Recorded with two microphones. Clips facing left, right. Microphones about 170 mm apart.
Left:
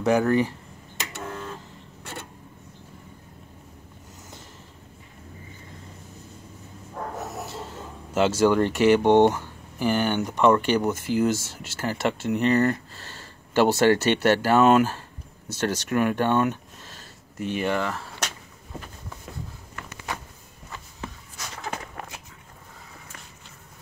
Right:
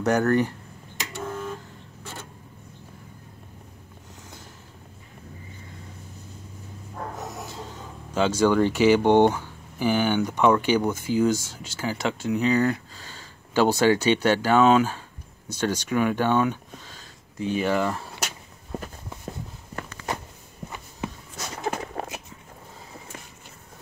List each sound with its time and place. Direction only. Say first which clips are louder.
0.0 s speech: left 1 dB; centre (ahead or behind)
8.1 s speech: left 1 dB; 5° left (ahead or behind)
17.6 s speech: right 2 dB; 5° right (ahead or behind)
21.9 s a sound: right 6 dB; 25° right (ahead or behind)